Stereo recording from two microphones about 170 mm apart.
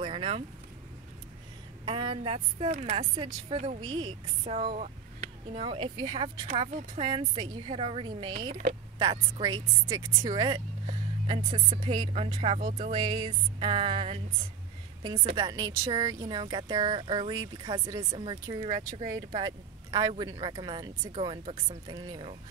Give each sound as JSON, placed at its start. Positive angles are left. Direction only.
{"t": 0.0, "sound": "vehicle", "side_deg": -30}
{"t": 1.9, "sound": "a woman's voice", "side_deg": -30}
{"t": 3.6, "sound": "speech", "side_deg": -25}
{"t": 4.6, "sound": "a sound", "side_deg": -50}
{"t": 5.5, "sound": "a woman's voice", "side_deg": -30}
{"t": 15.3, "sound": "speech", "side_deg": -25}